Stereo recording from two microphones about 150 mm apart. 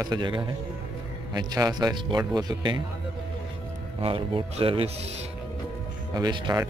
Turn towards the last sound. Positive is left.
turn(degrees=-30)  # may be behind; listen again after turning